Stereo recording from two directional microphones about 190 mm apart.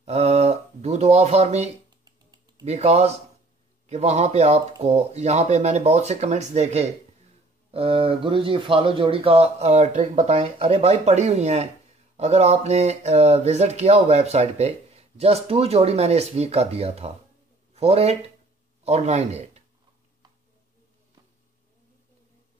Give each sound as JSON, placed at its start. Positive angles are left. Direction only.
{"t": 0.0, "sound": "a sound", "side_deg": -35}
{"t": 1.9, "sound": "guitar", "side_deg": -20}
{"t": 2.6, "sound": "a man's voice", "side_deg": -35}